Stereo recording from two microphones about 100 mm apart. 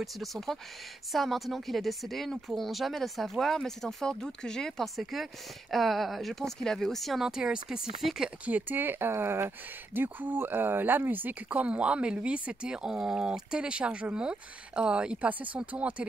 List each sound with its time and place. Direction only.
0.0 s a woman's voice: centre (ahead or behind)
8.5 s speech: 15° right (ahead or behind)